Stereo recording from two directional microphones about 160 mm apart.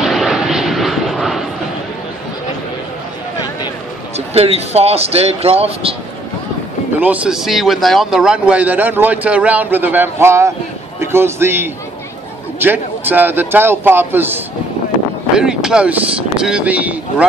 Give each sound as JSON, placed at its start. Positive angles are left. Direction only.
{"t": 0.0, "sound": "vehicle", "side_deg": 0}
{"t": 4.3, "sound": "speech", "side_deg": -40}
{"t": 7.0, "sound": "a man's voice", "side_deg": -10}